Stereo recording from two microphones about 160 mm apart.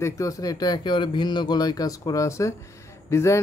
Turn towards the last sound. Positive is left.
turn(degrees=15)  # may be behind; listen again after turning